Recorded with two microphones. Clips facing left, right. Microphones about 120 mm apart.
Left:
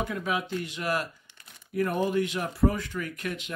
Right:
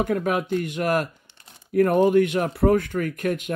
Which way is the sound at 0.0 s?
55° right (ahead or behind).